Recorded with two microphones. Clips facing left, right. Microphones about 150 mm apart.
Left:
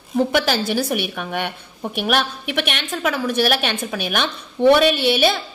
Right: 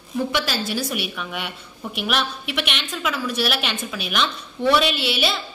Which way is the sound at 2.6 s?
50° left (ahead or behind).